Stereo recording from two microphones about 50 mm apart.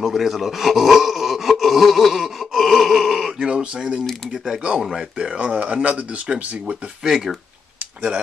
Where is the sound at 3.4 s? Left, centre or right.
Right.